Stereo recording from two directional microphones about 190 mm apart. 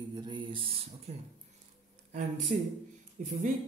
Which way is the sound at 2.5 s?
40° right (ahead or behind).